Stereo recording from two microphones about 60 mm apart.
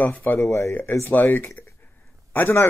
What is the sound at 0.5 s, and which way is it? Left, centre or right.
Speech, left.